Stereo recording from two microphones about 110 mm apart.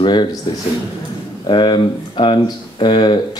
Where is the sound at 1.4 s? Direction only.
45° left (ahead or behind).